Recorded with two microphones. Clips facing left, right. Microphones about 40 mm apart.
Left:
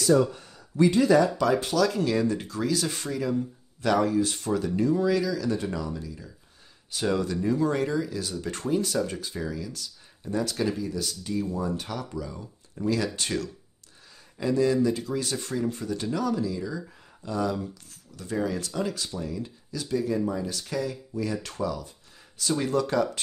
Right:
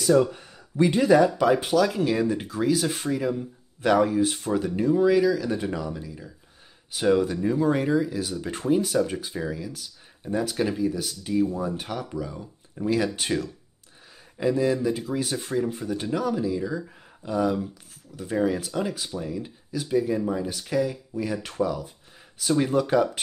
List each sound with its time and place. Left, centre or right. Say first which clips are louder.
0.0 s speech: right 2 dB; centre